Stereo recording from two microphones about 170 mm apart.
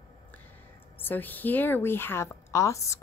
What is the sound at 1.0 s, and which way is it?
Speech, 10° left (ahead or behind).